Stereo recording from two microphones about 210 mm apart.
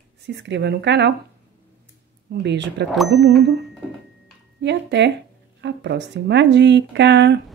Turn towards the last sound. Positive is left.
turn(degrees=-55)  # may be behind; listen again after turning